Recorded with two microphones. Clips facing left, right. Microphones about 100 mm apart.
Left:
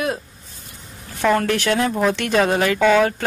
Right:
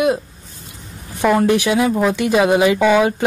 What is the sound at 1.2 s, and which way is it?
Speech, 15° right (ahead or behind).